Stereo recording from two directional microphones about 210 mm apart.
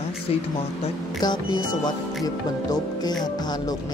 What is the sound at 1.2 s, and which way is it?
Speech, 20° left (ahead or behind).